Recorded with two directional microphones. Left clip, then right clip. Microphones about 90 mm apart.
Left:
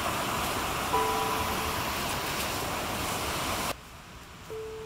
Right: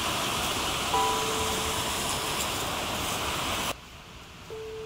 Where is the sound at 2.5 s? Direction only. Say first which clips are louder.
Right 1 dB; 10° left (ahead or behind).